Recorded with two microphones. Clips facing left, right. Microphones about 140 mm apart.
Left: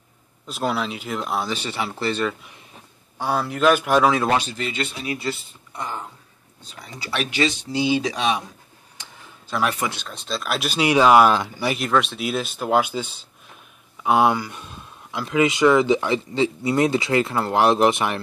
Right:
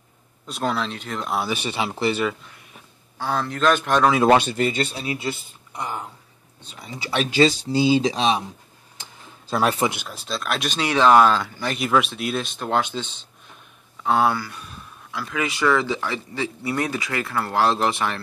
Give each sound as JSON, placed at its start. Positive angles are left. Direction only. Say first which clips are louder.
{"t": 0.5, "sound": "speech", "louder": "left 1 dB", "side_deg": 5}
{"t": 1.5, "sound": "speech", "louder": "right 2 dB", "side_deg": -15}
{"t": 3.2, "sound": "speech", "louder": "left 2 dB", "side_deg": 10}
{"t": 4.3, "sound": "speech", "louder": "right 5 dB", "side_deg": -60}
{"t": 9.5, "sound": "speech", "louder": "right 3 dB", "side_deg": -30}
{"t": 9.8, "sound": "speech", "louder": "right 2 dB", "side_deg": -10}
{"t": 11.7, "sound": "speech", "louder": "right 1 dB", "side_deg": 0}